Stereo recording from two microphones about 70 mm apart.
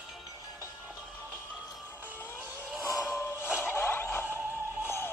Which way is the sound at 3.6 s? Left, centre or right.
Left.